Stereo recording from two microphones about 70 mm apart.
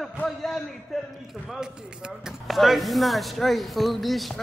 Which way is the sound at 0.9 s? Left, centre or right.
Centre.